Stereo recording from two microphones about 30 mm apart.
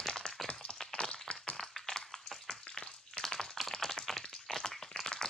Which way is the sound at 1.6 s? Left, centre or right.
Centre.